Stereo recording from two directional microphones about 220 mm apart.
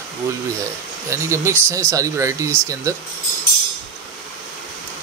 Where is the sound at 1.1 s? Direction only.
10° right (ahead or behind).